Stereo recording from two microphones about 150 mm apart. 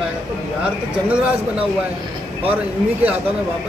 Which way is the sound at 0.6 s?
10° right (ahead or behind).